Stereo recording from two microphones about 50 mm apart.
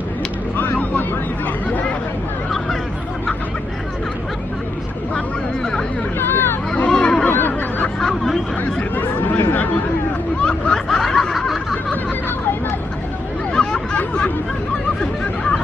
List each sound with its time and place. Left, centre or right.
0.6 s vehicle: left
1.7 s chatter: left
5.6 s chatter: centre
6.1 s chatter: left
6.9 s honk: centre
7.2 s snicker: left
8.0 s snicker: centre
8.9 s chatter: left
10.4 s snicker: left
10.9 s snicker: centre
13.5 s hubbub: centre
13.9 s a sound: left